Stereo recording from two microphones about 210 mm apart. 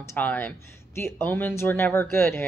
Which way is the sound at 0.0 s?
10° left (ahead or behind).